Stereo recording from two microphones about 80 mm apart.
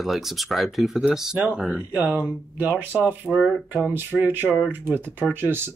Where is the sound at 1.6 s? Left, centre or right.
Centre.